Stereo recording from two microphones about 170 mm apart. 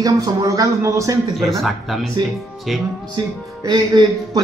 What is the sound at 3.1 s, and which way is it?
A man's voice, 20° right (ahead or behind).